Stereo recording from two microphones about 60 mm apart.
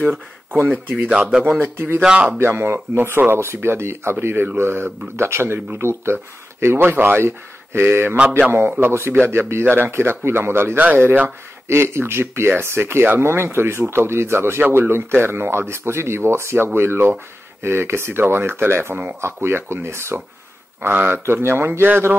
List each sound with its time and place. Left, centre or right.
0.0 s speech: right
0.9 s speech: centre
2.3 s speech: right
10.8 s speech: right
20.8 s speech: right